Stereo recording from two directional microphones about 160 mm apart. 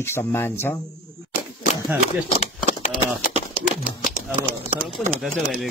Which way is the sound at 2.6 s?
45° right (ahead or behind).